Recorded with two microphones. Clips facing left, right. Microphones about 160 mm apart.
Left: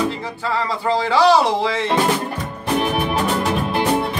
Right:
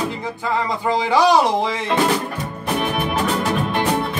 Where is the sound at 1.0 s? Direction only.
15° right (ahead or behind).